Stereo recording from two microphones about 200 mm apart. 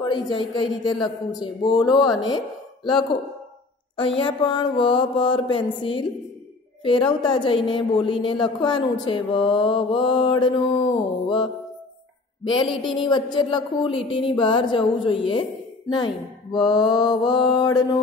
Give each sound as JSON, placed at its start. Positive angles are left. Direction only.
{"t": 0.0, "sound": "a woman's voice", "side_deg": 25}
{"t": 4.2, "sound": "a woman's voice", "side_deg": 25}
{"t": 11.2, "sound": "music", "side_deg": 25}
{"t": 12.4, "sound": "a woman's voice", "side_deg": 25}
{"t": 16.5, "sound": "a woman's voice", "side_deg": 20}